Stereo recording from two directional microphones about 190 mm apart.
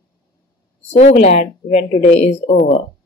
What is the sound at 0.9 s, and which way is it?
Speech, 40° left (ahead or behind).